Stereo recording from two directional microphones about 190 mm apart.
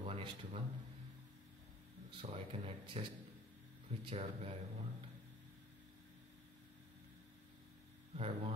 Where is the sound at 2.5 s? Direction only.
25° right (ahead or behind).